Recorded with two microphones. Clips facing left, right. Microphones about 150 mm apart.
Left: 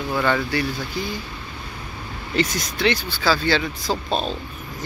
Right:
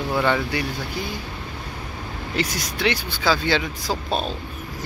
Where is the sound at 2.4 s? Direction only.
10° right (ahead or behind).